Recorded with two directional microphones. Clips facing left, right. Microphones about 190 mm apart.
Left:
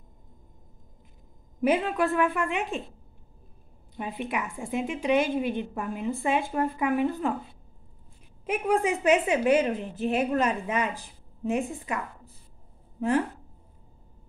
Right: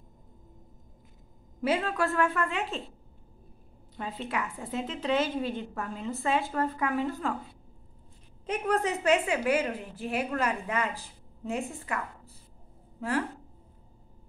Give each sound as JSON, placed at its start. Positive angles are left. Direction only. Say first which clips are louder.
{"t": 1.6, "sound": "a woman's voice", "louder": "left 4 dB", "side_deg": 15}
{"t": 3.9, "sound": "a woman's voice", "louder": "left 3 dB", "side_deg": 15}
{"t": 8.5, "sound": "a woman's voice", "louder": "left 3 dB", "side_deg": 10}